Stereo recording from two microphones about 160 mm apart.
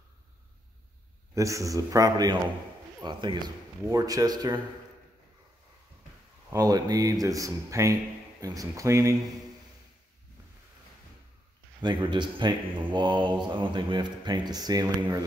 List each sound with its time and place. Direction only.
1.3 s speech: 20° right (ahead or behind)
6.5 s speech: 20° right (ahead or behind)
11.8 s speech: 30° right (ahead or behind)